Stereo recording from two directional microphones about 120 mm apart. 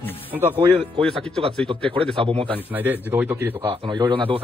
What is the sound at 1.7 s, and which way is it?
Speech, 40° right (ahead or behind).